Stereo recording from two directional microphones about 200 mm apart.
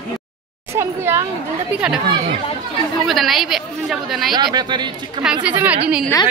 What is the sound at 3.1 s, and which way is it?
A woman's voice, centre (ahead or behind).